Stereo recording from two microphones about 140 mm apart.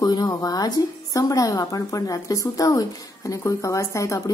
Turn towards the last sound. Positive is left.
turn(degrees=25)  # may be behind; listen again after turning